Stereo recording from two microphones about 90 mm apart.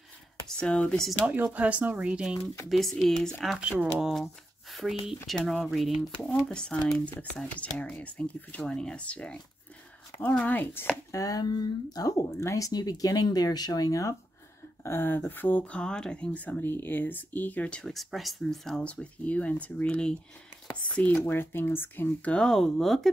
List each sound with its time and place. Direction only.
0.5 s speech: 10° left (ahead or behind)
1.2 s speech: 20° right (ahead or behind)
2.7 s speech: centre (ahead or behind)
6.3 s speech: 10° left (ahead or behind)
11.1 s speech: 40° left (ahead or behind)
14.8 s speech: 25° left (ahead or behind); by 23.0 s 5° left (ahead or behind)